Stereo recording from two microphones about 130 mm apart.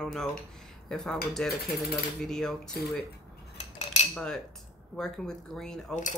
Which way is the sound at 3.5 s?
60° left (ahead or behind).